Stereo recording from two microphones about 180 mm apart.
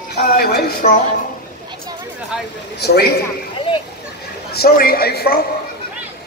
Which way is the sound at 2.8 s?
60° left (ahead or behind).